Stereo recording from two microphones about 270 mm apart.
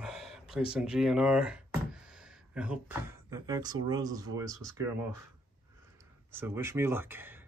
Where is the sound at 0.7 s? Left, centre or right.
Centre.